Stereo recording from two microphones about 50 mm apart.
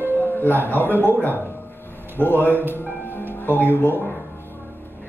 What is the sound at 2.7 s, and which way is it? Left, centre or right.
Music, left.